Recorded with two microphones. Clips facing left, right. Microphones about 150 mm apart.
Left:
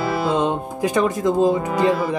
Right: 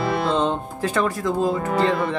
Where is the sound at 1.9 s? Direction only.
Centre (ahead or behind).